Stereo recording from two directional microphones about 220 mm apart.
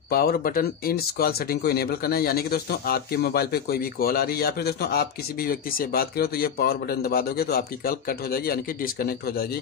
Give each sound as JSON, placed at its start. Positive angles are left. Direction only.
{"t": 0.1, "sound": "speech", "side_deg": 45}